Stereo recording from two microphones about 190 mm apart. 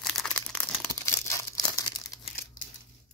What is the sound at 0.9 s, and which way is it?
Crumpling, 15° left (ahead or behind).